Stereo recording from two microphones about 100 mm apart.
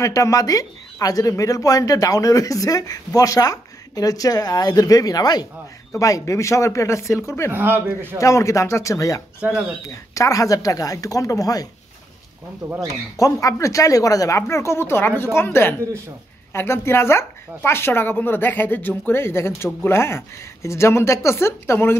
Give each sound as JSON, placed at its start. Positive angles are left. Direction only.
{"t": 0.0, "sound": "speech", "side_deg": 35}
{"t": 7.5, "sound": "a man's voice", "side_deg": -20}
{"t": 8.2, "sound": "speech", "side_deg": 30}
{"t": 9.4, "sound": "speech", "side_deg": -10}
{"t": 9.8, "sound": "speech", "side_deg": 35}
{"t": 12.6, "sound": "speech", "side_deg": -45}
{"t": 13.2, "sound": "speech", "side_deg": 35}